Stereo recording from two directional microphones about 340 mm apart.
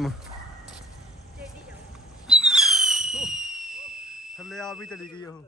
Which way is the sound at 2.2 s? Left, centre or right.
Centre.